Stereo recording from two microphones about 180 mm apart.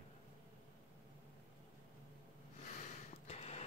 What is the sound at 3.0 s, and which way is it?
Snort, 35° left (ahead or behind).